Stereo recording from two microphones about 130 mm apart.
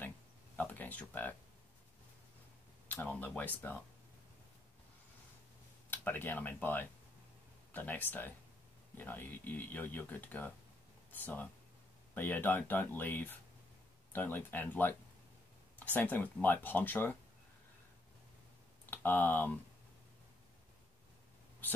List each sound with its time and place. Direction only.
0.6 s a sound: 15° left (ahead or behind)
2.9 s speech: 15° left (ahead or behind)
5.9 s speech: 15° left (ahead or behind)
18.9 s speech: 15° left (ahead or behind)